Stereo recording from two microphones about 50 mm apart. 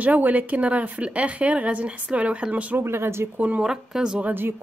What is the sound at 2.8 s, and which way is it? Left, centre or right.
Speech, right.